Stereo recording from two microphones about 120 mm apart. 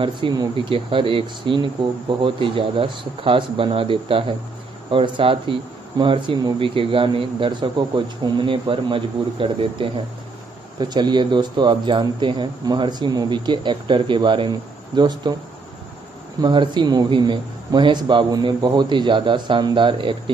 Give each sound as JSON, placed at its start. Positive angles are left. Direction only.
{"t": 0.0, "sound": "speech", "side_deg": -40}
{"t": 16.3, "sound": "speech", "side_deg": -40}